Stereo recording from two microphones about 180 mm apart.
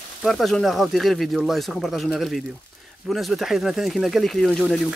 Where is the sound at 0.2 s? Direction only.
Centre (ahead or behind).